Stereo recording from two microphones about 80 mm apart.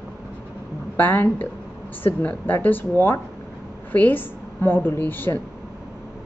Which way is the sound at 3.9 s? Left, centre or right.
Left.